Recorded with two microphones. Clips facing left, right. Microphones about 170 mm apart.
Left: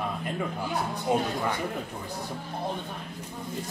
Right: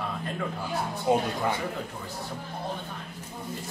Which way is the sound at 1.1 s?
20° right (ahead or behind).